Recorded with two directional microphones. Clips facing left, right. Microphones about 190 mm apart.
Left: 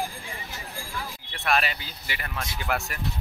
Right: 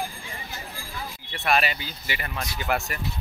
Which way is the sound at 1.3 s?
5° right (ahead or behind).